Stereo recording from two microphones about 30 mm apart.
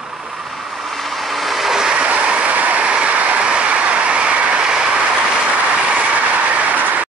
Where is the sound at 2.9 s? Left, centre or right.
Right.